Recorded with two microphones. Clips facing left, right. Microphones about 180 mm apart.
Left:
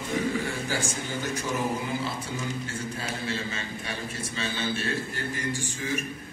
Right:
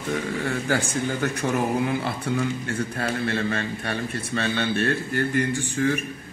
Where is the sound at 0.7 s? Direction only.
60° right (ahead or behind).